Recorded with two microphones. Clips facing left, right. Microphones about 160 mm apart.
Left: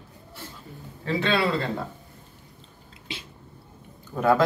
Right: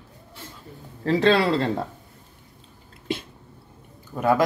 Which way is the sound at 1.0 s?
40° right (ahead or behind).